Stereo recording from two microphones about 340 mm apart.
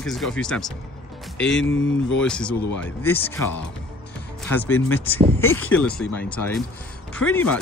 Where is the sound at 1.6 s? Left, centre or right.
Left.